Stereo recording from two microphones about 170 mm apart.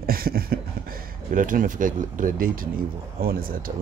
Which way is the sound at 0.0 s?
60° right (ahead or behind).